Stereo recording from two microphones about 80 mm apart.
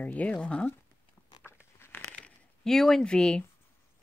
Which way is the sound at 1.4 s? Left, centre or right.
Left.